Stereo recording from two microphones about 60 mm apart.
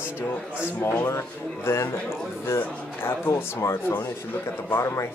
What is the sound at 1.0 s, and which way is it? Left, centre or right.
Speech, left.